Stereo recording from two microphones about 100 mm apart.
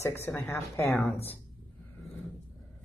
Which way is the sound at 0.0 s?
30° left (ahead or behind).